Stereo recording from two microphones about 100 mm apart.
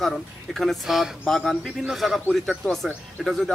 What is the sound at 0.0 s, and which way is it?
Speech, centre (ahead or behind).